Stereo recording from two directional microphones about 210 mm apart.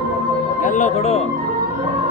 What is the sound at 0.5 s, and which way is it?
Speech, 35° left (ahead or behind).